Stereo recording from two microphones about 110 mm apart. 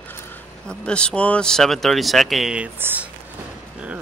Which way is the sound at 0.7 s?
10° left (ahead or behind).